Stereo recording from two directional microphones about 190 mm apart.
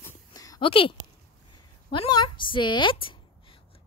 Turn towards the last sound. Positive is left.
turn(degrees=25)  # may be behind; listen again after turning